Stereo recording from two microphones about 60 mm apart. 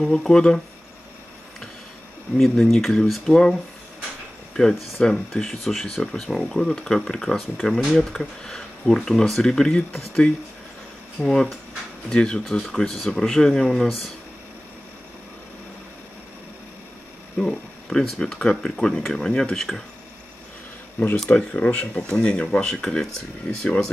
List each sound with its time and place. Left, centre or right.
0.0 s speech: centre
2.3 s speech: centre
4.7 s speech: centre
17.4 s speech: centre
21.2 s speech: centre